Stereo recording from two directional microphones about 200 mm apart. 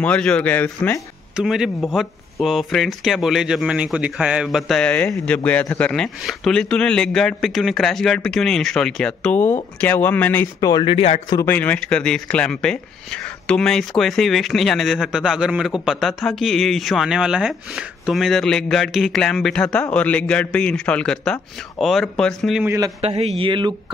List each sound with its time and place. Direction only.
0.0 s speech: 5° left (ahead or behind)
1.3 s speech: centre (ahead or behind); by 11.3 s 25° left (ahead or behind)
11.3 s speech: 10° left (ahead or behind)
23.0 s a man's voice: 30° right (ahead or behind)